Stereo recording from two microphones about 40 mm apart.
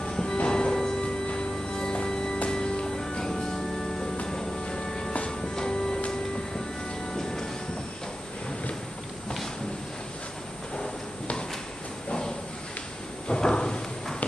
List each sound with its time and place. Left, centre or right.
0.0 s music: centre
7.2 s train: centre
13.3 s a sound: left